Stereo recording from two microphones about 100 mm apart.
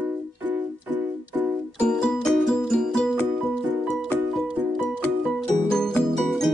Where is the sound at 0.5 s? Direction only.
20° right (ahead or behind).